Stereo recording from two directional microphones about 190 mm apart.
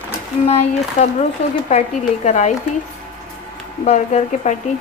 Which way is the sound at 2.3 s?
40° left (ahead or behind).